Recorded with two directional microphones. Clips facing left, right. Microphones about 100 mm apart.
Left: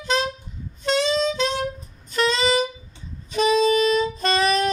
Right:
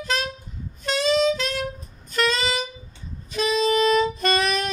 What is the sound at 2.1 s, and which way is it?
Music, 25° left (ahead or behind).